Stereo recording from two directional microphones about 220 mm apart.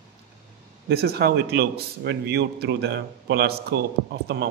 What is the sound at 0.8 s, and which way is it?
A man's voice, 45° right (ahead or behind).